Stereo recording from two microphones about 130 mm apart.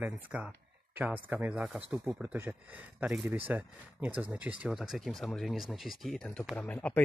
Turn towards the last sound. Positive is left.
turn(degrees=10)  # may be behind; listen again after turning